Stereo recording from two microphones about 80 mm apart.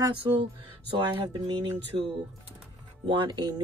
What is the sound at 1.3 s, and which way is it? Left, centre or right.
Speech, right.